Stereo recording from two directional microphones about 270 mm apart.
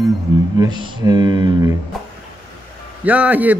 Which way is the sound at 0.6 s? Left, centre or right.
Centre.